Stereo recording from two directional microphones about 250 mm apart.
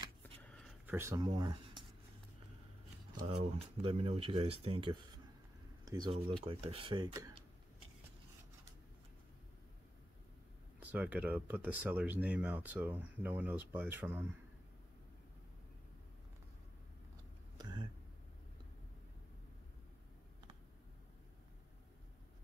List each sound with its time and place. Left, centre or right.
0.6 s speech: centre
3.2 s speech: right
10.8 s speech: centre
17.6 s a sound: centre